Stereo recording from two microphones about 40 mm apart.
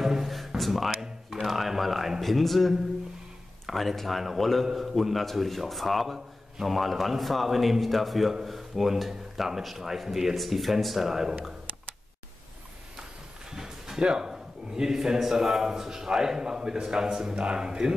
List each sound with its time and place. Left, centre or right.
0.0 s a sound: centre
0.6 s a man's voice: centre
13.5 s a man's voice: centre